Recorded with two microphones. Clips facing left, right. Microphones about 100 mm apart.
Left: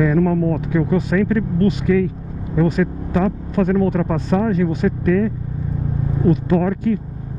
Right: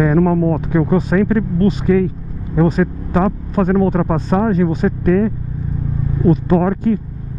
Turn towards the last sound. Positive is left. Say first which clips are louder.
# right 3 dB
turn(degrees=-40)  # may be behind; listen again after turning